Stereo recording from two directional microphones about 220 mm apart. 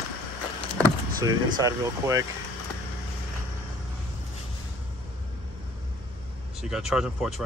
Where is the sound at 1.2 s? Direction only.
15° right (ahead or behind).